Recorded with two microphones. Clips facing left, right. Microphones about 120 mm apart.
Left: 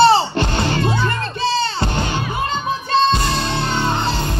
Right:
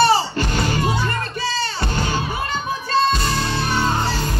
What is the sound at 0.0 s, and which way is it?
Music, 25° left (ahead or behind).